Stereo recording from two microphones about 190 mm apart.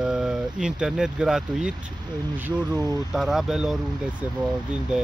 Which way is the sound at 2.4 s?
15° right (ahead or behind).